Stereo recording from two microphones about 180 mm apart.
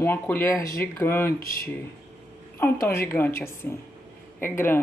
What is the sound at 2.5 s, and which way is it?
Speech, 15° left (ahead or behind).